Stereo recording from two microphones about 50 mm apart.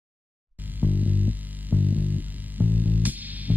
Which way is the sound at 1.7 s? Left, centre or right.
Right.